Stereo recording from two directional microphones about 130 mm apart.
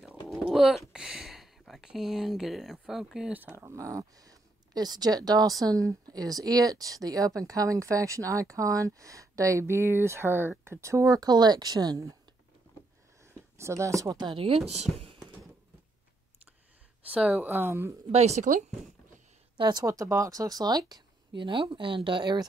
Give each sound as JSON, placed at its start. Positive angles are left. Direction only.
{"t": 0.3, "sound": "speech", "side_deg": 0}
{"t": 13.2, "sound": "speech", "side_deg": -20}
{"t": 17.1, "sound": "speech", "side_deg": -10}
{"t": 18.1, "sound": "a woman's voice", "side_deg": -60}
{"t": 19.5, "sound": "speech", "side_deg": -35}